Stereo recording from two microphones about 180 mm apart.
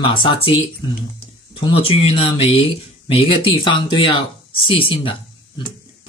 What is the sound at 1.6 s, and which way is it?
Speech, 30° left (ahead or behind).